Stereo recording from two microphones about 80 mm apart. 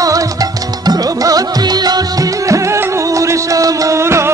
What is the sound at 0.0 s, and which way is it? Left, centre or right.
Music, right.